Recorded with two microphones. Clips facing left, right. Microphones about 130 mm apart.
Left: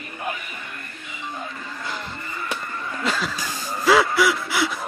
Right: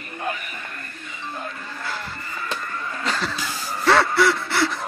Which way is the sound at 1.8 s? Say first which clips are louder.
Right 1 dB; 20° left (ahead or behind).